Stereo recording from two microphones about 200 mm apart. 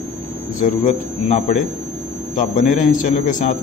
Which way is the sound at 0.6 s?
35° left (ahead or behind).